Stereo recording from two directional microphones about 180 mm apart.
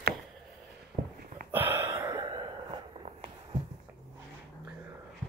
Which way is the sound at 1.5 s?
10° right (ahead or behind).